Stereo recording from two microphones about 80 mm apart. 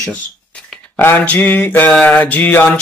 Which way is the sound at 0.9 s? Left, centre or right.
Left.